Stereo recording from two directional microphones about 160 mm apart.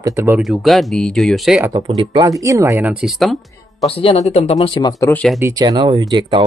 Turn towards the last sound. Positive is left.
turn(degrees=-30)  # may be behind; listen again after turning